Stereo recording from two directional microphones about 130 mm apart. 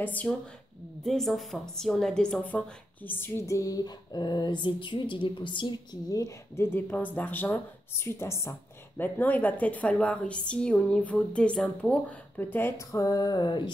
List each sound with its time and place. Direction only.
0.0 s a woman's voice: 10° left (ahead or behind)
1.0 s a woman's voice: centre (ahead or behind); by 13.7 s 35° left (ahead or behind)